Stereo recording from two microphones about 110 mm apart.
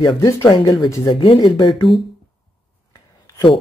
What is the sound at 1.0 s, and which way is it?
Speech, 50° left (ahead or behind).